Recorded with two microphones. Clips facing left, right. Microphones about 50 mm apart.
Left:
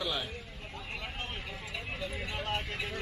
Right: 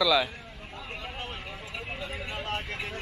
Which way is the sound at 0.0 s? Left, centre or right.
Right.